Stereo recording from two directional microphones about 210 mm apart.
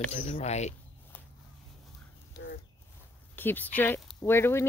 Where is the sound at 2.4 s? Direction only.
45° left (ahead or behind).